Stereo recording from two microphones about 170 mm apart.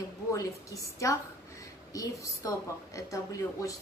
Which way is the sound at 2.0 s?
20° left (ahead or behind).